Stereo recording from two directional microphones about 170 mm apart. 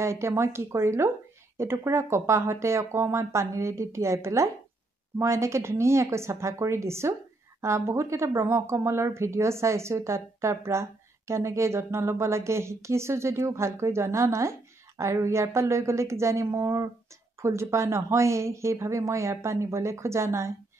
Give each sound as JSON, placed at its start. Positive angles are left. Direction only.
{"t": 0.0, "sound": "speech", "side_deg": -15}